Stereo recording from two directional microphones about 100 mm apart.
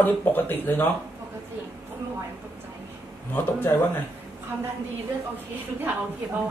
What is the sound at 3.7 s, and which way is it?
Speech, 25° left (ahead or behind).